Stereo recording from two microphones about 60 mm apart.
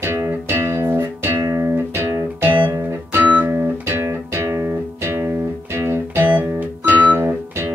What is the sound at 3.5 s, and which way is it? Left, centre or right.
Music, right.